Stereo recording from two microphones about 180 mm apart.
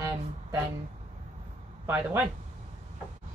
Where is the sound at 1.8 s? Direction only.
10° right (ahead or behind).